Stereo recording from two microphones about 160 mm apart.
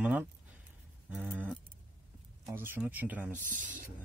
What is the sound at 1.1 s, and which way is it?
Livestock, 10° right (ahead or behind).